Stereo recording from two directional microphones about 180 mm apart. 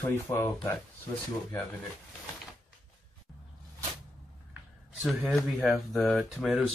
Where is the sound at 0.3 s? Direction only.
15° left (ahead or behind).